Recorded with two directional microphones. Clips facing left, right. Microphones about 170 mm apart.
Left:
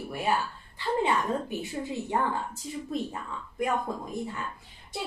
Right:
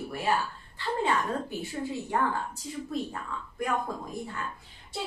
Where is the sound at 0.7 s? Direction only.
20° left (ahead or behind).